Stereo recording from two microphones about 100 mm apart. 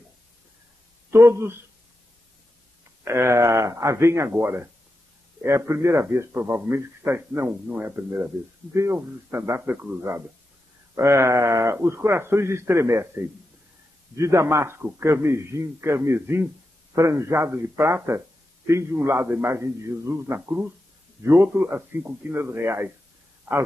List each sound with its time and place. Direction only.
1.1 s a man's voice: 25° right (ahead or behind)
3.0 s a man's voice: 25° right (ahead or behind)